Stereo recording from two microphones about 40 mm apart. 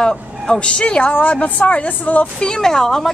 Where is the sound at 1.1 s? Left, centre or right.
Left.